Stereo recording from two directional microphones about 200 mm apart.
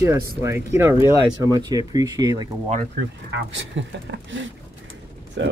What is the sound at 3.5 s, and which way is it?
Speech, 70° right (ahead or behind).